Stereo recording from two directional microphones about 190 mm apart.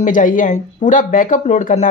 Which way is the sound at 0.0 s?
45° left (ahead or behind).